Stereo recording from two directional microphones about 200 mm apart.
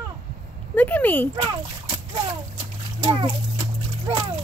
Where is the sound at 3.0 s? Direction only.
25° right (ahead or behind).